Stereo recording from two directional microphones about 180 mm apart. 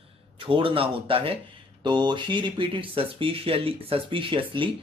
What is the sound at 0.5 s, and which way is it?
Speech, 30° right (ahead or behind).